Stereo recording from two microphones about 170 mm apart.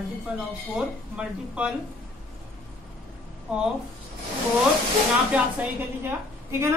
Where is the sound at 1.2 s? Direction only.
5° right (ahead or behind).